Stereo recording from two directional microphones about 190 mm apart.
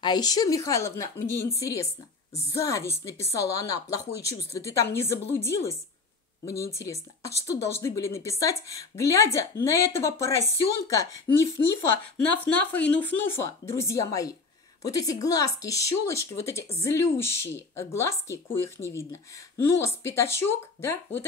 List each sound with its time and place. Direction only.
0.0 s speech: 20° left (ahead or behind)